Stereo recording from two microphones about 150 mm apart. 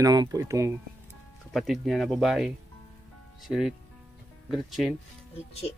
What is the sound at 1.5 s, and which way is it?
Speech, centre (ahead or behind).